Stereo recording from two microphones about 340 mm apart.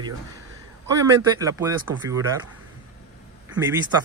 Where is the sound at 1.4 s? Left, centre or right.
Centre.